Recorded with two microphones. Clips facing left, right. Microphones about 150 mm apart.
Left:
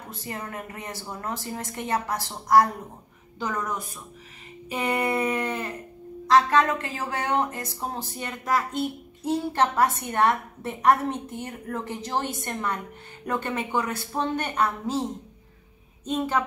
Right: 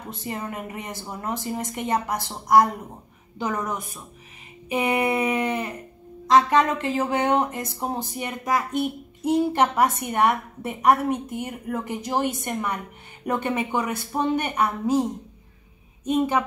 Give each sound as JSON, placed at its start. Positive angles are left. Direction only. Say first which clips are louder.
{"t": 0.1, "sound": "a woman's voice", "louder": "right 4 dB", "side_deg": -20}
{"t": 16.1, "sound": "speech", "louder": "right 4 dB", "side_deg": -15}